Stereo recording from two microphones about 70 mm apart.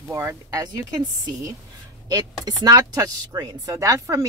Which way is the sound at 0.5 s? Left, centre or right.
Right.